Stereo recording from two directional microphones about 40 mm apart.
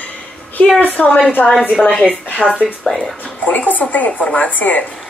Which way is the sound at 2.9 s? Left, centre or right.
Left.